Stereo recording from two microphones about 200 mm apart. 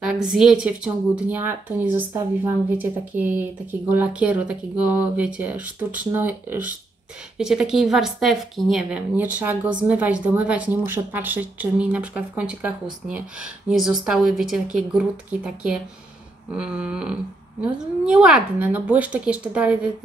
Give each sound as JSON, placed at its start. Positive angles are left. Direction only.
{"t": 0.0, "sound": "a woman's voice", "side_deg": -5}